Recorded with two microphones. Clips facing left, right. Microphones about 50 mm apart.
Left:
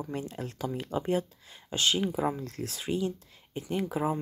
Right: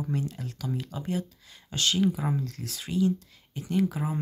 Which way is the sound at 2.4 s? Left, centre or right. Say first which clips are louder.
Even; left.